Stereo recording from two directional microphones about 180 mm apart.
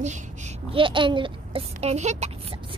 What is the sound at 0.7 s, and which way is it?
A child's voice, 30° right (ahead or behind).